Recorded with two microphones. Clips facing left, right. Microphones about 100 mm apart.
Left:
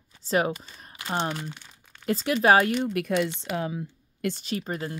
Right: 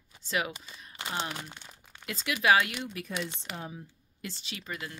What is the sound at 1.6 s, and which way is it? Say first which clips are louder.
Crumpling: right 1 dB; 10° right (ahead or behind).